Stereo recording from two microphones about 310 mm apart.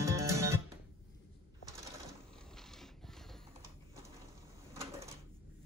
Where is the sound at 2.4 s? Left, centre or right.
Centre.